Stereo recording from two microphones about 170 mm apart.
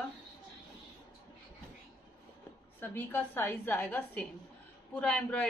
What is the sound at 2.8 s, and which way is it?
A woman's voice, 10° left (ahead or behind).